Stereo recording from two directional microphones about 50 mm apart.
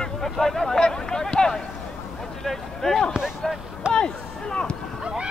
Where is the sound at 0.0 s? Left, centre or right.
Centre.